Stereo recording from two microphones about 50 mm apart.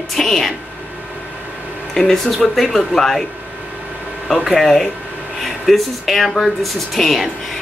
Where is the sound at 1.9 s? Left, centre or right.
Centre.